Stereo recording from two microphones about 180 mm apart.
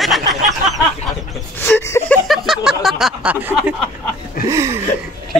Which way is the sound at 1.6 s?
15° left (ahead or behind).